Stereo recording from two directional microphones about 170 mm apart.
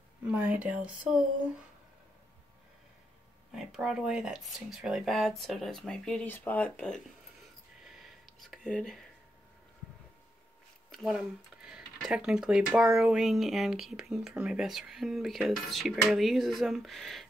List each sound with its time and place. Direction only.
0.3 s speech: 10° right (ahead or behind)
3.5 s speech: centre (ahead or behind)
8.4 s speech: 5° left (ahead or behind)
10.9 s speech: centre (ahead or behind)